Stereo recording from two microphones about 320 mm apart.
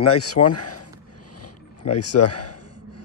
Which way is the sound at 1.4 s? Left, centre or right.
Left.